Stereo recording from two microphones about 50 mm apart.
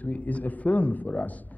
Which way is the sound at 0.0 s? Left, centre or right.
Left.